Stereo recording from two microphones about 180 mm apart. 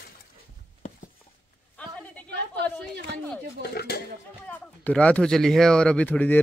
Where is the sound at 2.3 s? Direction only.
70° right (ahead or behind).